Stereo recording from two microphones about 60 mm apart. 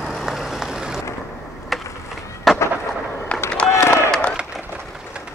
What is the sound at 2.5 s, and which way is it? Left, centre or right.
Fireworks, centre.